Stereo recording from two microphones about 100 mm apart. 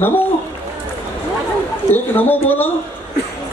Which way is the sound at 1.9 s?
20° left (ahead or behind).